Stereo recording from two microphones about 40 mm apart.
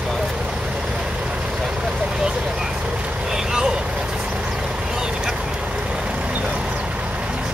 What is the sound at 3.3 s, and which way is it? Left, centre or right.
Vehicle, centre.